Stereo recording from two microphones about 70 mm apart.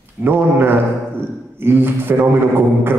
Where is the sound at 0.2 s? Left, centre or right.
Right.